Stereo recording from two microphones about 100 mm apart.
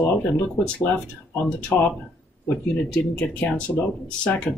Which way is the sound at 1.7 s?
25° left (ahead or behind).